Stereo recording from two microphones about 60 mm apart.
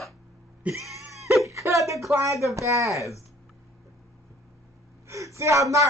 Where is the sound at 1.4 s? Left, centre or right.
Right.